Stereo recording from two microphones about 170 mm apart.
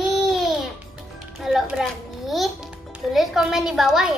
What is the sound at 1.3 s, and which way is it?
Music, centre (ahead or behind).